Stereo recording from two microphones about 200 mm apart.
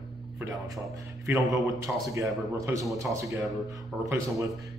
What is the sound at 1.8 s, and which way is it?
Speech, 15° right (ahead or behind).